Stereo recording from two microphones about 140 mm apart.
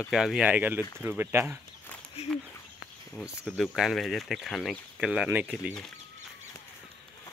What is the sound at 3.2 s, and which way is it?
Speech, centre (ahead or behind).